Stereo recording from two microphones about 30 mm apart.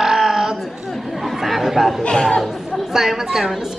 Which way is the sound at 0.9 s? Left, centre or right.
Centre.